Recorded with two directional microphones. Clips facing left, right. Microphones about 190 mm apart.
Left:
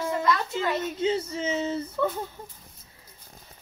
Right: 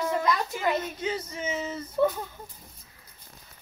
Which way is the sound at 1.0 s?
30° left (ahead or behind).